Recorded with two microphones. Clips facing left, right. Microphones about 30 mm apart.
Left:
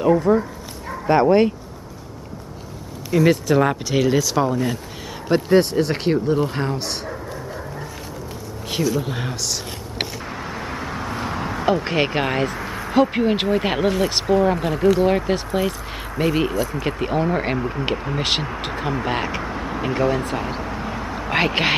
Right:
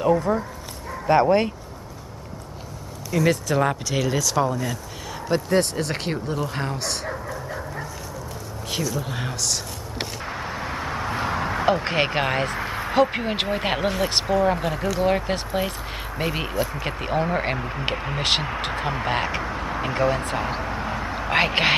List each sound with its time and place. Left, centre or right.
0.0 s speech: centre
3.1 s speech: centre
8.6 s speech: centre
10.2 s vehicle: centre
11.1 s a sound: centre
11.6 s speech: centre
12.4 s a sound: right
12.9 s speech: centre
18.2 s speech: centre